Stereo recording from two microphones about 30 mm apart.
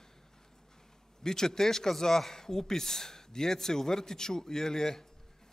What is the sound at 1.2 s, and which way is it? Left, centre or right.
A man's voice, centre.